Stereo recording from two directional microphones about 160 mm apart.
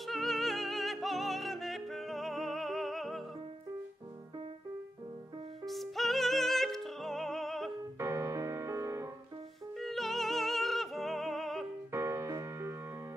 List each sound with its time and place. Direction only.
0.0 s music: centre (ahead or behind)
5.7 s music: centre (ahead or behind)
8.0 s music: 15° right (ahead or behind)
9.8 s music: centre (ahead or behind)
11.9 s music: 15° right (ahead or behind)